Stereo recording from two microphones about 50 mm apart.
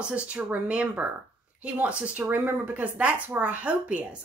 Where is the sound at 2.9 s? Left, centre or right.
Right.